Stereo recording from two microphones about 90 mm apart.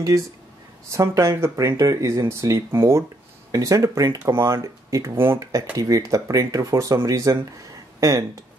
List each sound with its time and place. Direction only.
0.8 s speech: 35° right (ahead or behind)